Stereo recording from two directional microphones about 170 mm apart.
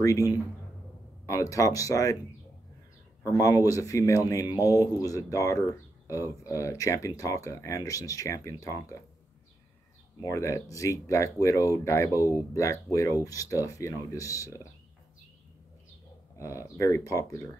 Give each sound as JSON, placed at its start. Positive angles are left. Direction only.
{"t": 0.0, "sound": "speech", "side_deg": 20}
{"t": 3.3, "sound": "speech", "side_deg": 20}
{"t": 10.2, "sound": "speech", "side_deg": 20}
{"t": 16.3, "sound": "speech", "side_deg": 20}